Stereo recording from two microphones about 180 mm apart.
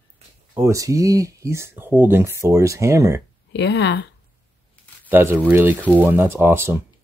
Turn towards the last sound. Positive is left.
turn(degrees=-15)  # may be behind; listen again after turning